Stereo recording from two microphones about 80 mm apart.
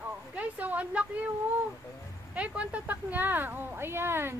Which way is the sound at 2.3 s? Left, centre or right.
Centre.